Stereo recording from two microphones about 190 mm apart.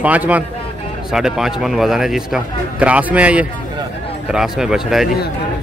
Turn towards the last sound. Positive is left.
turn(degrees=0)  # may be behind; listen again after turning